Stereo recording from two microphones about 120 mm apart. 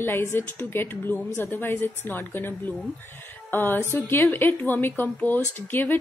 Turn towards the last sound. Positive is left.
turn(degrees=15)  # may be behind; listen again after turning